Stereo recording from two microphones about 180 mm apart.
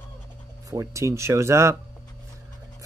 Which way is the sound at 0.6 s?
15° right (ahead or behind).